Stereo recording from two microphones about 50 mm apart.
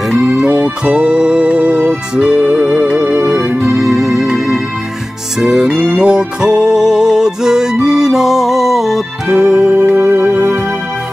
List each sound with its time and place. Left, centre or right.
0.1 s music: centre
3.0 s music: right
3.6 s music: centre
5.7 s music: right; by 9.4 s centre
9.4 s music: right
9.8 s music: right
10.2 s music: right